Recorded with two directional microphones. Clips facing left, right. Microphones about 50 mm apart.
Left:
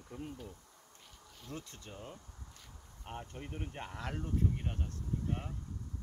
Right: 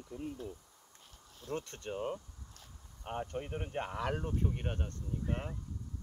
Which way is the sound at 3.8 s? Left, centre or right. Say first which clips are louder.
Right 7 dB; right.